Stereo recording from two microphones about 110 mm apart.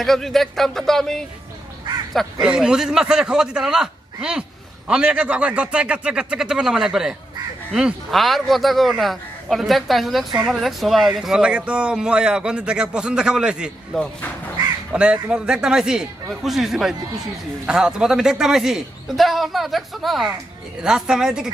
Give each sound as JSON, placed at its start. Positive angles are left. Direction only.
{"t": 0.0, "sound": "a man's voice", "side_deg": 0}
{"t": 2.4, "sound": "a man's voice", "side_deg": -10}
{"t": 13.9, "sound": "a man's voice", "side_deg": 5}
{"t": 14.9, "sound": "a man's voice", "side_deg": -10}